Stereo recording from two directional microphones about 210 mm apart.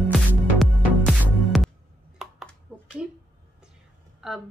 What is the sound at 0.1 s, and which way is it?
Music, centre (ahead or behind).